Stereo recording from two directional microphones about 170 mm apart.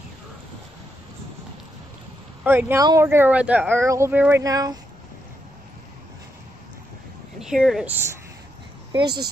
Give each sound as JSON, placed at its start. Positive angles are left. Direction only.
{"t": 2.4, "sound": "speech", "side_deg": -15}
{"t": 7.3, "sound": "a woman's voice", "side_deg": -5}
{"t": 9.0, "sound": "speech", "side_deg": -70}